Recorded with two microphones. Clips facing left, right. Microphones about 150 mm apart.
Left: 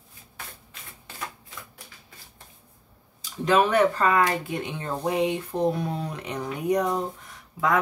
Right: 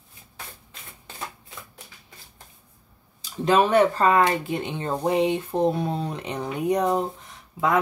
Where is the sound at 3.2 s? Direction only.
30° right (ahead or behind).